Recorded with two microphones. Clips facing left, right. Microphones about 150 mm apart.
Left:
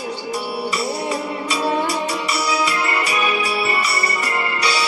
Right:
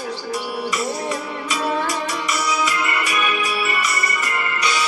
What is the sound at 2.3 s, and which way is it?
Music, 35° left (ahead or behind).